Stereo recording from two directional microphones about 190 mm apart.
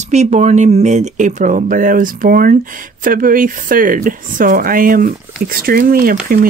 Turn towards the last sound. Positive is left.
turn(degrees=-50)  # may be behind; listen again after turning